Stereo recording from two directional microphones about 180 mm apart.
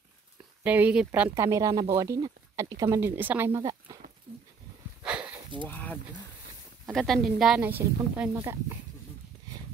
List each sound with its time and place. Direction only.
0.7 s speech: 10° right (ahead or behind)
5.0 s a sound: 5° right (ahead or behind)
5.7 s speech: 10° left (ahead or behind); by 8.7 s 15° right (ahead or behind)